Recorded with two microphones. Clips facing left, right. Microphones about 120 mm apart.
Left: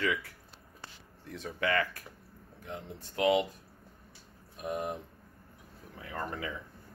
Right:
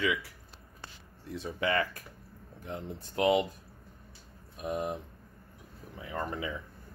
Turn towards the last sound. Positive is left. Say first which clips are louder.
# right 2 dB
turn(degrees=-15)  # may be behind; listen again after turning